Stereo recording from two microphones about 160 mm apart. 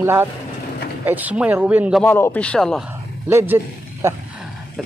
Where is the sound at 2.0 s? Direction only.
10° left (ahead or behind).